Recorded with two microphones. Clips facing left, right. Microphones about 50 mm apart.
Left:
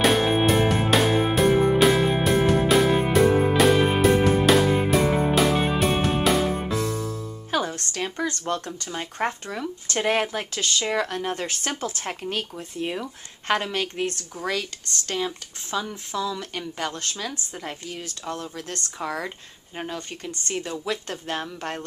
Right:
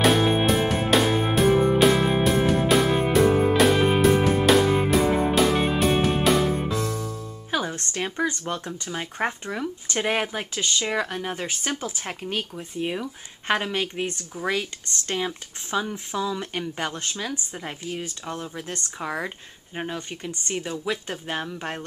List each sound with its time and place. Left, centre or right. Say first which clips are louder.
0.0 s music: even; centre
7.7 s a sound: right 1 dB; right
8.0 s speech: right 2 dB; centre